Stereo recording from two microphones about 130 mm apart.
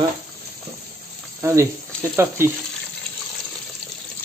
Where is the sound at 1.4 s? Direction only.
20° right (ahead or behind).